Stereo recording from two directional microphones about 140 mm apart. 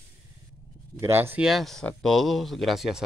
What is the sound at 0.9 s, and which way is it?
Speech, 15° right (ahead or behind).